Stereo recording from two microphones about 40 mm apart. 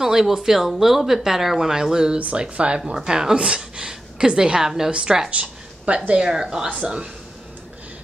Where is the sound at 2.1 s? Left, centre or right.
Right.